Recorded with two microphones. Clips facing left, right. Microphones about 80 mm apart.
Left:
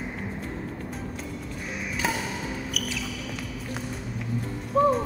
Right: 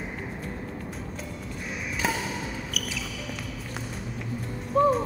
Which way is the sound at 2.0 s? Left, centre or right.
Centre.